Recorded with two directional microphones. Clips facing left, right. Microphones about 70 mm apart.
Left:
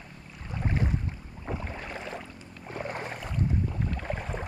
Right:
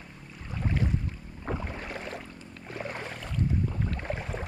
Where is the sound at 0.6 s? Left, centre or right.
Centre.